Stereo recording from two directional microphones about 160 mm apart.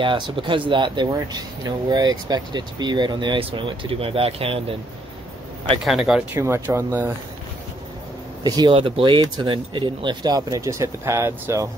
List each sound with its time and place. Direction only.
0.0 s speech: 30° right (ahead or behind)
5.9 s speech: centre (ahead or behind)
6.3 s speech: 15° right (ahead or behind)
8.5 s speech: 25° right (ahead or behind)